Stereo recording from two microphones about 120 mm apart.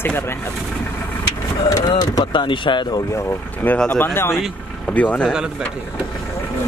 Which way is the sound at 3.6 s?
5° left (ahead or behind).